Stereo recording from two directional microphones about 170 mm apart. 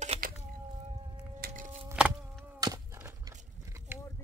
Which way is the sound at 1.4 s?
50° right (ahead or behind).